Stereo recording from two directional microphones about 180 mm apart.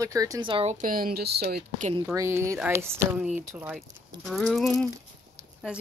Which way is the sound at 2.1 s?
15° right (ahead or behind).